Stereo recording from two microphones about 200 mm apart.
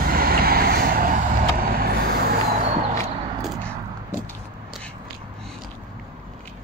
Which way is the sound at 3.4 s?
5° left (ahead or behind).